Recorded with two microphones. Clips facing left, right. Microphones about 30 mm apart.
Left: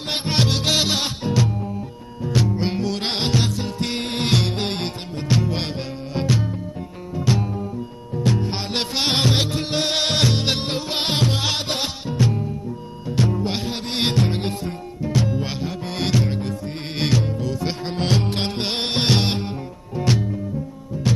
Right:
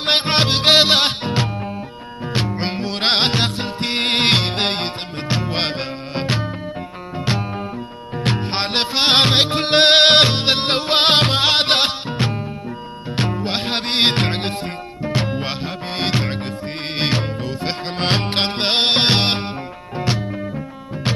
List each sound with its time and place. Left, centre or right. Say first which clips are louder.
0.0 s music: right 6 dB; right
4.0 s music: right 7 dB; right
4.8 s music: right 1 dB; right
5.5 s music: right 4 dB; right
7.2 s music: even; right
8.2 s music: right 2 dB; right
8.7 s music: right 5 dB; right
9.1 s music: right 7 dB; right
10.6 s music: right 8 dB; right
13.7 s music: right 6 dB; right
15.0 s music: right 1 dB; right
15.2 s music: right 1 dB; right
20.0 s music: left 1 dB; right